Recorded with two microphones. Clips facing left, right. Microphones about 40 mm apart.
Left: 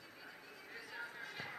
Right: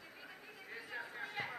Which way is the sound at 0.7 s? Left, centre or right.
Right.